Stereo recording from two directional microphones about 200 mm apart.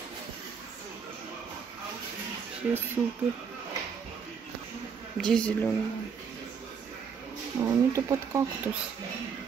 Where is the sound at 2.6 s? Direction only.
5° right (ahead or behind).